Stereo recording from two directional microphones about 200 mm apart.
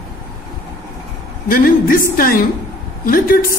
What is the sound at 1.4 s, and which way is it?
Speech, 45° left (ahead or behind).